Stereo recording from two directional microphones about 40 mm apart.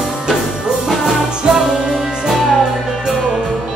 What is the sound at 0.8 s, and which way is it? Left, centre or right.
Music, centre.